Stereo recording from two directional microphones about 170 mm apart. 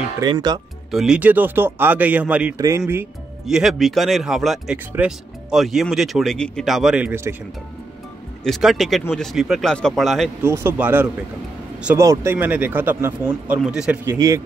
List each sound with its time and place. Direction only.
0.2 s speech: 25° right (ahead or behind)
0.9 s speech: 5° right (ahead or behind)
2.5 s speech: 20° right (ahead or behind)
3.4 s speech: centre (ahead or behind)
8.5 s speech: centre (ahead or behind)
10.4 s speech: 15° right (ahead or behind)
14.1 s speech: 20° right (ahead or behind)